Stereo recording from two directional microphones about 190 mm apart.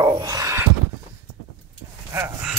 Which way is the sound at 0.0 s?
20° right (ahead or behind).